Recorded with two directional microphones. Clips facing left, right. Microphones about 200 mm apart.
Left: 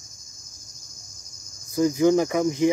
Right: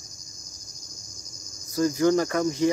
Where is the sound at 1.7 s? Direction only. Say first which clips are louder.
Left 2 dB; 15° left (ahead or behind).